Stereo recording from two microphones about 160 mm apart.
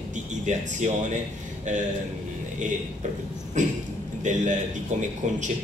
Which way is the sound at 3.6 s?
50° right (ahead or behind).